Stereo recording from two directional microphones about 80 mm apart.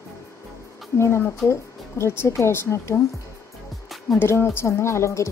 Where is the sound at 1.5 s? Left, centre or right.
Left.